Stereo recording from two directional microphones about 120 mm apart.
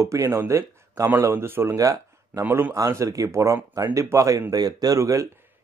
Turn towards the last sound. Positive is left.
turn(degrees=-25)  # may be behind; listen again after turning